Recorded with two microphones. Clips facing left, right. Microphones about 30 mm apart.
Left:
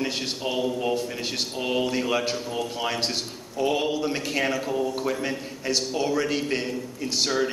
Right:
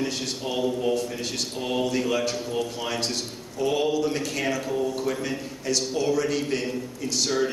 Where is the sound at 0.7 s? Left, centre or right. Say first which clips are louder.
Right 1 dB; left.